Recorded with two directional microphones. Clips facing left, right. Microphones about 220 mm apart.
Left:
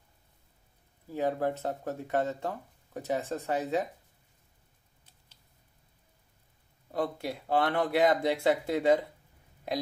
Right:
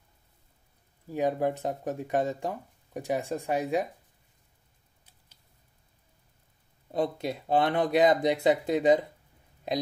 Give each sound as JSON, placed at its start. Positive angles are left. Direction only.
{"t": 1.1, "sound": "speech", "side_deg": -15}
{"t": 6.9, "sound": "speech", "side_deg": -20}